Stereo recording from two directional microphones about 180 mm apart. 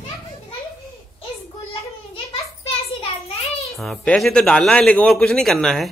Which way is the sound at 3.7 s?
Centre (ahead or behind).